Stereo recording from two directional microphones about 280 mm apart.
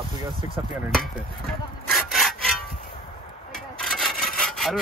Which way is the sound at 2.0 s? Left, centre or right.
Centre.